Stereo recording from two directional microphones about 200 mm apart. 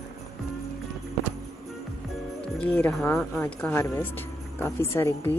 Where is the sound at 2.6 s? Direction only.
10° left (ahead or behind).